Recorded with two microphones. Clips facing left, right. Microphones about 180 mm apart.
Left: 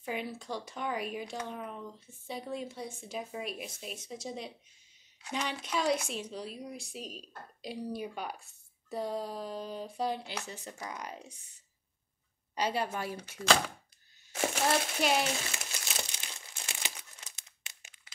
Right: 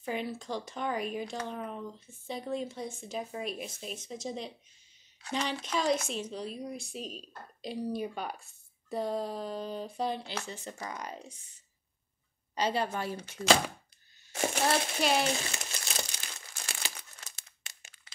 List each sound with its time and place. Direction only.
0.0 s speech: 10° left (ahead or behind)
8.8 s a sound: 10° left (ahead or behind)
9.3 s speech: 10° left (ahead or behind)
12.5 s speech: 10° left (ahead or behind)
16.1 s crumpling: 20° left (ahead or behind)